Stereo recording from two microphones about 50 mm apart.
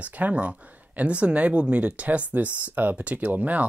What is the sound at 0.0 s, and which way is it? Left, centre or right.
Speech, right.